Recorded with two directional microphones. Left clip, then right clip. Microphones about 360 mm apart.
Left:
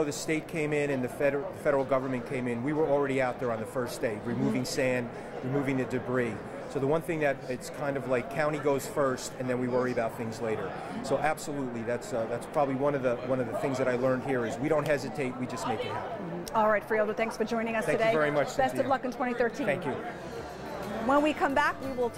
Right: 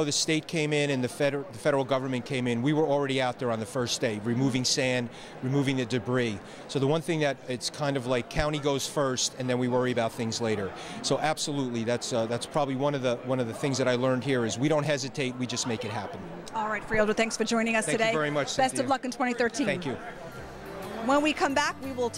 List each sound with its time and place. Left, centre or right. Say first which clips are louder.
0.0 s speech: right 3 dB; right
16.5 s speech: left 6 dB; centre
16.9 s speech: right 3 dB; centre
18.1 s speech: left 1 dB; right
18.6 s speech: right 1 dB; centre
21.1 s speech: right 1 dB; centre